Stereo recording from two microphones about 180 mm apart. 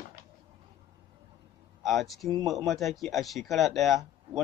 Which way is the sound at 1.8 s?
Centre (ahead or behind).